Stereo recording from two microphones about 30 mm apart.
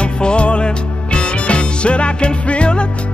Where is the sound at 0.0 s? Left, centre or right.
Left.